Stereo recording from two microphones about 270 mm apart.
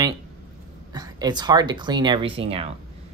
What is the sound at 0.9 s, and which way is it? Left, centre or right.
Speech, centre.